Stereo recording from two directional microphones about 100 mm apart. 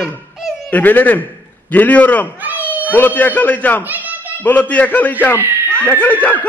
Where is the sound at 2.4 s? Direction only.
15° right (ahead or behind).